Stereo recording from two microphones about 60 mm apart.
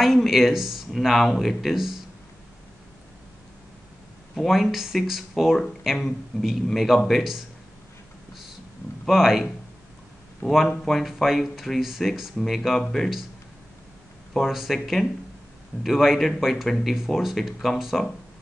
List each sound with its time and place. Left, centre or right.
0.0 s speech: centre
4.4 s speech: centre
9.0 s speech: centre
14.3 s speech: centre
16.6 s speech: centre